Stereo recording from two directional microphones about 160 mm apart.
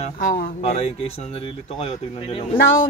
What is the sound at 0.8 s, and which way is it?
Speech, 40° left (ahead or behind).